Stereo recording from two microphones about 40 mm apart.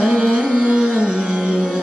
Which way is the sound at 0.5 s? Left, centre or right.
Right.